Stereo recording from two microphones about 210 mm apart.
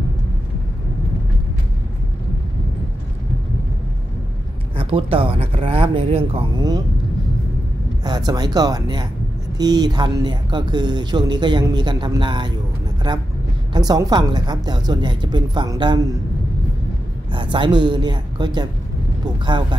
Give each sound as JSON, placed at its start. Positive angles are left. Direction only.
{"t": 4.7, "sound": "speech", "side_deg": -25}
{"t": 8.0, "sound": "speech", "side_deg": -20}
{"t": 13.7, "sound": "speech", "side_deg": -20}
{"t": 17.3, "sound": "speech", "side_deg": -25}